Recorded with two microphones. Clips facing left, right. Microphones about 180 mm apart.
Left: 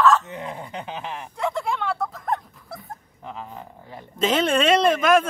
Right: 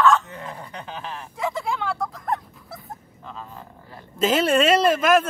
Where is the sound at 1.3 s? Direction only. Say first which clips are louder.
Left 1 dB; centre (ahead or behind).